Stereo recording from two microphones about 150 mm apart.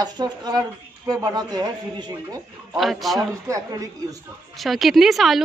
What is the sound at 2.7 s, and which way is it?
Speech, centre (ahead or behind).